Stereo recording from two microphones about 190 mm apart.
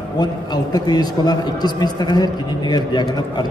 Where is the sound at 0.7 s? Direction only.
20° left (ahead or behind).